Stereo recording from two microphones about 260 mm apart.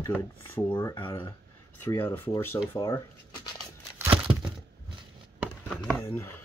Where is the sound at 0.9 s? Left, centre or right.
Centre.